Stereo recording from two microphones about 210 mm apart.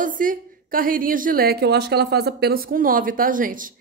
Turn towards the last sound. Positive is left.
turn(degrees=-40)  # may be behind; listen again after turning